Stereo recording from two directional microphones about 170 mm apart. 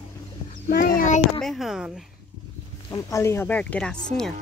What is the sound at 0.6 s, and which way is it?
Speech, 55° left (ahead or behind).